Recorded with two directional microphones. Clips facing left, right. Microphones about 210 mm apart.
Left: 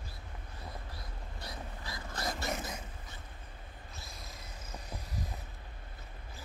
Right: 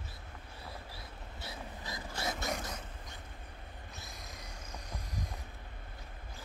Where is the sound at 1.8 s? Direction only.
20° right (ahead or behind).